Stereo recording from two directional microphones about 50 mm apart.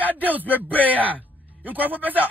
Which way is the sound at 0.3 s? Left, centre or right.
Right.